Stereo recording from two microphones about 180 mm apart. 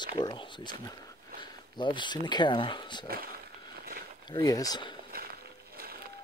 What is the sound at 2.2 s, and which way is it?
Speech, 25° left (ahead or behind).